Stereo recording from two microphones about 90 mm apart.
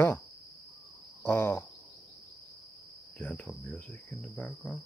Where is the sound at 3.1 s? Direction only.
15° left (ahead or behind).